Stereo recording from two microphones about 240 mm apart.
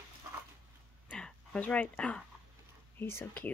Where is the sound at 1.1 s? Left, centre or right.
Centre.